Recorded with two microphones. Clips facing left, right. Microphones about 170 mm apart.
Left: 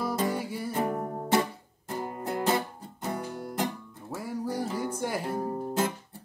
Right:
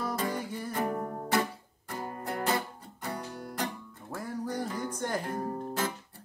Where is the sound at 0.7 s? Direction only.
25° left (ahead or behind).